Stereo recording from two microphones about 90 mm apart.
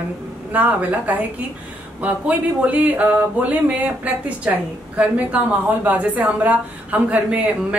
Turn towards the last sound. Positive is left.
turn(degrees=-15)  # may be behind; listen again after turning